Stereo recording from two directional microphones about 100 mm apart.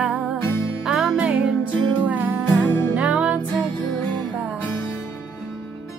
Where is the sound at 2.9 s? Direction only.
15° right (ahead or behind).